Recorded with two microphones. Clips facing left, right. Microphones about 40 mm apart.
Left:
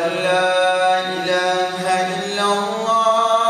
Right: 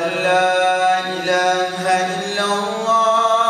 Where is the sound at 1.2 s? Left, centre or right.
Left.